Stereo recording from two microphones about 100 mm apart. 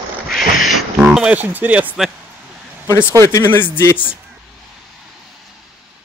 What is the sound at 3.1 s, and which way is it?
Speech, 25° left (ahead or behind).